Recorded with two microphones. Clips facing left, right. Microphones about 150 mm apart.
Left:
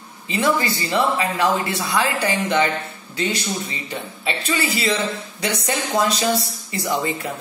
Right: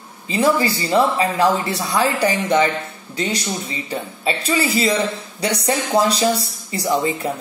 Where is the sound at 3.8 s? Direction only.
35° right (ahead or behind).